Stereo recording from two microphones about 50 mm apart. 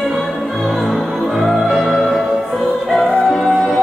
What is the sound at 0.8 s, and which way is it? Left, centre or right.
Music, centre.